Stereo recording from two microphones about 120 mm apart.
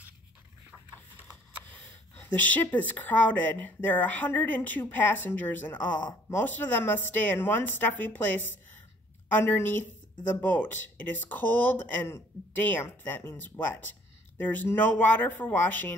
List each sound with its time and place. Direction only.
1.7 s speech: 15° left (ahead or behind)